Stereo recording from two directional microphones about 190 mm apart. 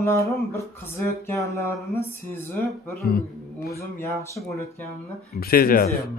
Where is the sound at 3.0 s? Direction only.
55° left (ahead or behind).